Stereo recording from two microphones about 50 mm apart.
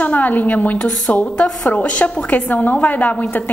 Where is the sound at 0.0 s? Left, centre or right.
Left.